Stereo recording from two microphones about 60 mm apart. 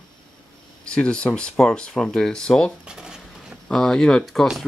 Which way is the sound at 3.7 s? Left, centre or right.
Centre.